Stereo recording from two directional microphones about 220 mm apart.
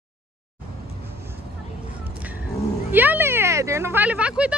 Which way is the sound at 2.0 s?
5° right (ahead or behind).